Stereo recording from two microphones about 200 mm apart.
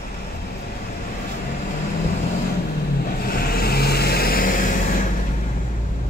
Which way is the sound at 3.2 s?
50° left (ahead or behind).